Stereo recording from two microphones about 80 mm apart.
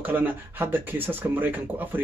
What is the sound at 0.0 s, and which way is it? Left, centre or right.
A man's voice, right.